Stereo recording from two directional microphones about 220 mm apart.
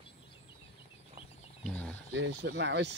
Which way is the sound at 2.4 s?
55° right (ahead or behind).